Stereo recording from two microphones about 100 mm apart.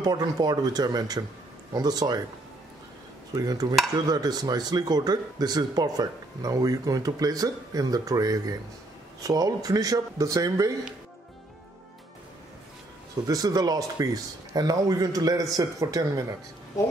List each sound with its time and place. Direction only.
0.0 s speech: 40° right (ahead or behind)
3.3 s speech: 40° right (ahead or behind)
13.1 s speech: 35° right (ahead or behind)